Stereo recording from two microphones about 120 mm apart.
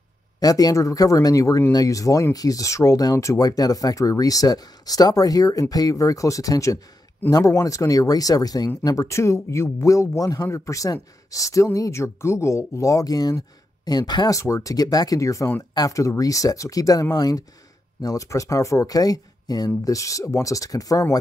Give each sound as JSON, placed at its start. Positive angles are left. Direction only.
{"t": 0.4, "sound": "speech", "side_deg": 30}